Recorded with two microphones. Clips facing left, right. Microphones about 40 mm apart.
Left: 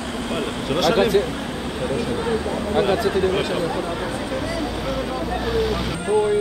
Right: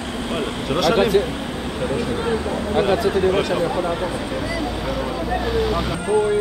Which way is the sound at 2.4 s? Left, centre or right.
Centre.